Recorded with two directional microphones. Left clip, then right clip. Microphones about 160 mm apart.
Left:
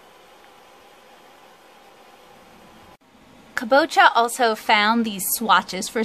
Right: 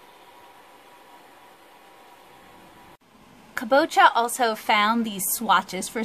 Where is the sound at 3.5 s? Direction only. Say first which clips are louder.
Left 3 dB; centre (ahead or behind).